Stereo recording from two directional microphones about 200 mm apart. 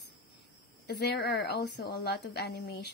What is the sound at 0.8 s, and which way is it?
A woman's voice, 55° left (ahead or behind).